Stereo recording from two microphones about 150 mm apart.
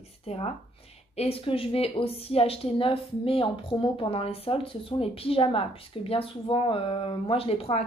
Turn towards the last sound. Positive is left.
turn(degrees=40)  # may be behind; listen again after turning